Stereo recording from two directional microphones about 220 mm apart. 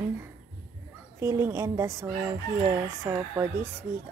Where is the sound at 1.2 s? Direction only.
10° right (ahead or behind).